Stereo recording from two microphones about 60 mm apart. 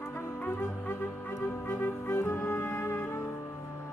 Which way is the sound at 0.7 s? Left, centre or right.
Left.